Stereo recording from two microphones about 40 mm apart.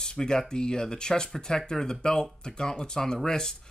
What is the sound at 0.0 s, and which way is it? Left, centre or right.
Speech, centre.